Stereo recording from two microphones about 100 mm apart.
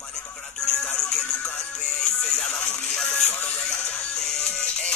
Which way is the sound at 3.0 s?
5° left (ahead or behind).